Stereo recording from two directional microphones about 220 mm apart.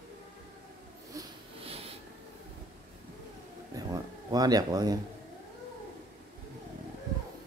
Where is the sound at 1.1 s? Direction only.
25° right (ahead or behind).